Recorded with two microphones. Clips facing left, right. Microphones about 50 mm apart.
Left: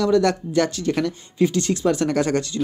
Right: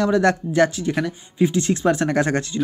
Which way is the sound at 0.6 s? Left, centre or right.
Centre.